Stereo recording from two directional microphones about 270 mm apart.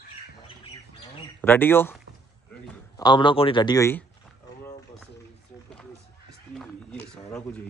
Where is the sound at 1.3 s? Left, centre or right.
Centre.